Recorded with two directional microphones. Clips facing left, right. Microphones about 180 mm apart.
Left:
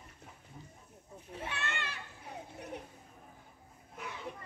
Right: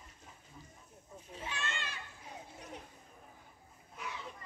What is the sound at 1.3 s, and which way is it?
Children playing, 60° left (ahead or behind).